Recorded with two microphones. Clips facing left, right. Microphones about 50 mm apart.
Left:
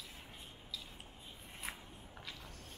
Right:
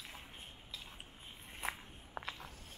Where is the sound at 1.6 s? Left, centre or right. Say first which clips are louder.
Right 5 dB; right.